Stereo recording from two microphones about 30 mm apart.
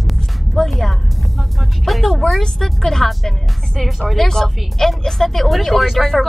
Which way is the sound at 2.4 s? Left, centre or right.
Centre.